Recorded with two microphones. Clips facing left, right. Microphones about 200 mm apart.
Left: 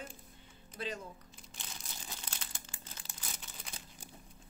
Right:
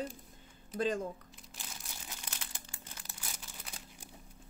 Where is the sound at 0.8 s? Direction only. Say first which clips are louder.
Right 9 dB; 45° right (ahead or behind).